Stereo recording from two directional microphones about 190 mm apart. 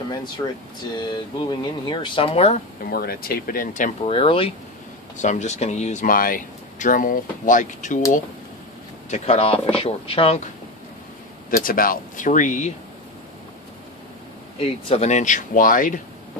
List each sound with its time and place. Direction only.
0.4 s speech: 20° left (ahead or behind)
2.9 s speech: 55° left (ahead or behind)
4.1 s speech: 30° left (ahead or behind)
5.1 s speech: 40° left (ahead or behind)
9.1 s speech: 35° left (ahead or behind)
11.5 s speech: 50° left (ahead or behind)
14.6 s speech: 35° left (ahead or behind)